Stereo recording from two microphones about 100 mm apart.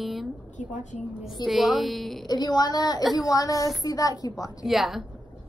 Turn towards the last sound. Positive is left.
turn(degrees=0)  # may be behind; listen again after turning